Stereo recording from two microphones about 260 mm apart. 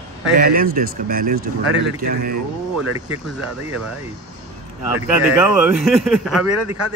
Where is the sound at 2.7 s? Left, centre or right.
Centre.